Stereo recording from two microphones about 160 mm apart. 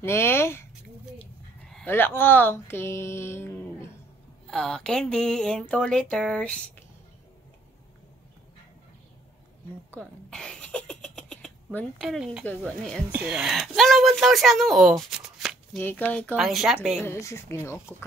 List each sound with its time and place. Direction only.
0.0 s speech: 15° left (ahead or behind)
4.5 s speech: 5° left (ahead or behind)
9.8 s a sound: 5° left (ahead or behind)
13.1 s speech: 5° right (ahead or behind)
15.8 s speech: 10° left (ahead or behind)
17.0 s speech: 15° left (ahead or behind)